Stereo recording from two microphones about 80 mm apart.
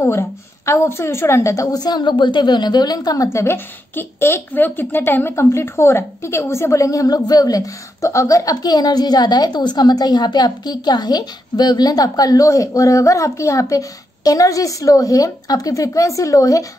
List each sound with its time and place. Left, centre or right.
0.0 s speech: left
3.3 s speech: left